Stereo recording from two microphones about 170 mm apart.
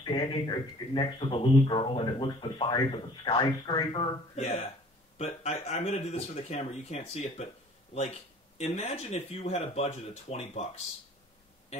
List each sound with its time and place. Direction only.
0.0 s speech: 30° left (ahead or behind)
5.1 s speech: 40° left (ahead or behind)